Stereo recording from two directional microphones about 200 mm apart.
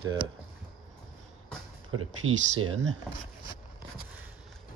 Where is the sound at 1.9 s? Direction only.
90° right.